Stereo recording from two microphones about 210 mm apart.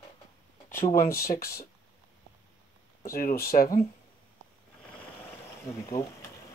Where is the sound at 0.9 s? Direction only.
45° left (ahead or behind).